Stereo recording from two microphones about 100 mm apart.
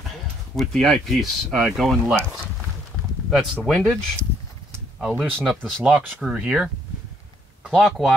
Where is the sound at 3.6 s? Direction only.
Centre (ahead or behind).